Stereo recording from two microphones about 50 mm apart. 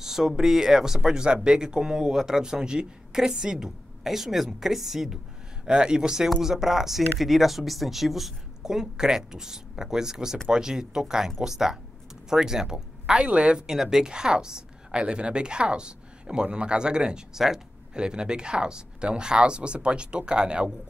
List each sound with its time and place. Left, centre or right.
0.0 s a woman's voice: centre
5.7 s a woman's voice: centre